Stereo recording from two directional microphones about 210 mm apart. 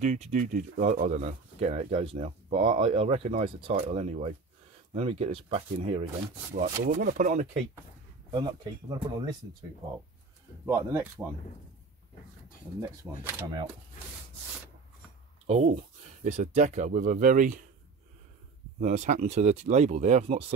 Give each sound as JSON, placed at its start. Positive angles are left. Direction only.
{"t": 0.0, "sound": "speech", "side_deg": -35}
{"t": 6.6, "sound": "speech", "side_deg": -40}
{"t": 8.3, "sound": "speech", "side_deg": -20}
{"t": 10.6, "sound": "speech", "side_deg": -15}
{"t": 13.0, "sound": "speech", "side_deg": -10}
{"t": 15.4, "sound": "speech", "side_deg": -30}
{"t": 18.8, "sound": "speech", "side_deg": -35}